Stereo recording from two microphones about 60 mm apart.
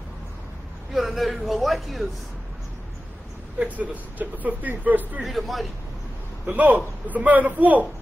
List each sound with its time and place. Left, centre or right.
0.9 s speech: centre
3.5 s speech: right
5.2 s speech: centre
6.5 s speech: right